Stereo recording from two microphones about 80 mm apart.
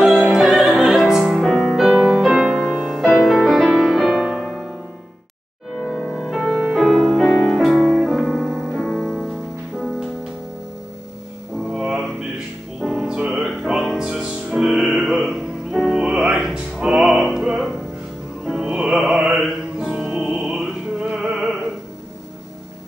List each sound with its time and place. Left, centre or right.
0.2 s music: centre
5.8 s music: centre
11.7 s mantra: centre
12.8 s music: centre
20.2 s music: right
21.2 s music: centre